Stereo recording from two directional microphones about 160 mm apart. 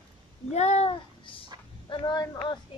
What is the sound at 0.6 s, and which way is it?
Speech, 45° left (ahead or behind).